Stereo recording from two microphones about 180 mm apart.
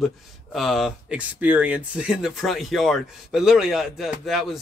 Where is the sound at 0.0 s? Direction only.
Centre (ahead or behind).